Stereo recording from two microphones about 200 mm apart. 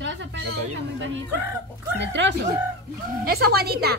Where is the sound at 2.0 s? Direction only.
60° right (ahead or behind).